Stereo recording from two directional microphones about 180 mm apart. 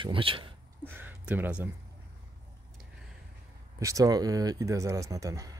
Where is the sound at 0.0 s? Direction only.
30° right (ahead or behind).